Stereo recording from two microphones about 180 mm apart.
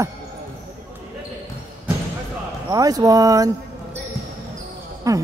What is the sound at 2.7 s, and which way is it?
Speech, 20° right (ahead or behind).